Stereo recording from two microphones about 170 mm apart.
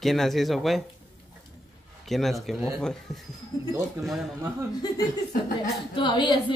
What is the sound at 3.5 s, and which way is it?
Speech, 20° left (ahead or behind).